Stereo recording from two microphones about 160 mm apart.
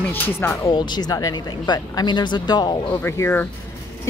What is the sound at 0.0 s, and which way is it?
Speech, 10° left (ahead or behind).